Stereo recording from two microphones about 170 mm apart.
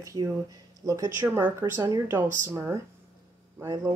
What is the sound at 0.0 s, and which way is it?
Speech, 20° right (ahead or behind).